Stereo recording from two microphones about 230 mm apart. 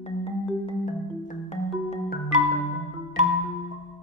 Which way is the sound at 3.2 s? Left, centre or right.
Right.